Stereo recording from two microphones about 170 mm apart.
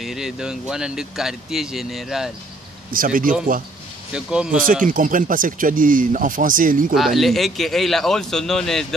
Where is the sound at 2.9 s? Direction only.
55° right (ahead or behind).